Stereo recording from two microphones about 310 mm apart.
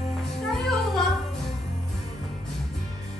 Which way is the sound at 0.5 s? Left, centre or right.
Centre.